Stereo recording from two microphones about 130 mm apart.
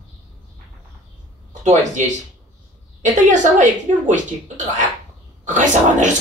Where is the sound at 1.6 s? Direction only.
70° right (ahead or behind).